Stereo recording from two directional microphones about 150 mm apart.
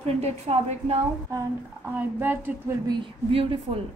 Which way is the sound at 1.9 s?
15° right (ahead or behind).